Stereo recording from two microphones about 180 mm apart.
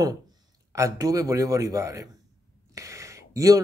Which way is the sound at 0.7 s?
20° right (ahead or behind).